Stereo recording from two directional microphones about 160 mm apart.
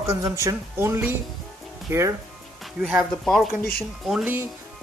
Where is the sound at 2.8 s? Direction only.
Centre (ahead or behind).